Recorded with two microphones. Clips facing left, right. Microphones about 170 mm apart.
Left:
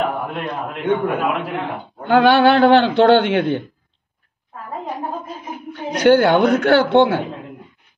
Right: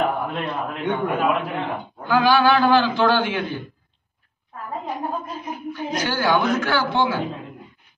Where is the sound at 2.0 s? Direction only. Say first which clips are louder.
Left 5 dB; 65° left (ahead or behind).